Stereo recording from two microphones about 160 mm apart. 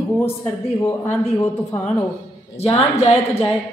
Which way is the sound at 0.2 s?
15° left (ahead or behind).